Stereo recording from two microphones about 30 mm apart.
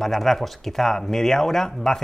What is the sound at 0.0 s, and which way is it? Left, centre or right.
Speech, centre.